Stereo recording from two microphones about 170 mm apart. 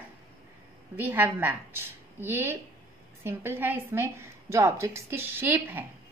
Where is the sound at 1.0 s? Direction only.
10° right (ahead or behind).